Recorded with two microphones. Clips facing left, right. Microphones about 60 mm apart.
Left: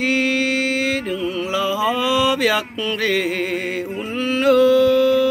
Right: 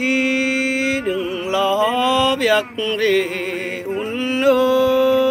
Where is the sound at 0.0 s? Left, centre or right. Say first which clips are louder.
Right 1 dB; centre.